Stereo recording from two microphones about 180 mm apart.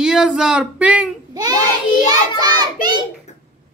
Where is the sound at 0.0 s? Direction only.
5° right (ahead or behind).